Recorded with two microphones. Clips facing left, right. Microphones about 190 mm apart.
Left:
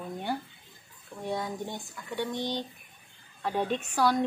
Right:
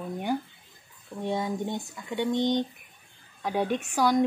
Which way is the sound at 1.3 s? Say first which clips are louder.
Right 4 dB; 20° right (ahead or behind).